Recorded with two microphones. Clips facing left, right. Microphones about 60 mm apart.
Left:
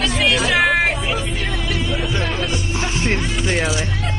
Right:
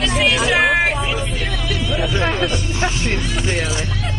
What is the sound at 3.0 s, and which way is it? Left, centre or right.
Speech, left.